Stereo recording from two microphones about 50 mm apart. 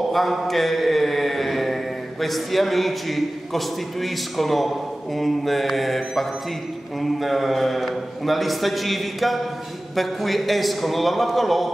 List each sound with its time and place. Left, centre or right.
0.1 s mantra: centre
7.0 s a man's voice: centre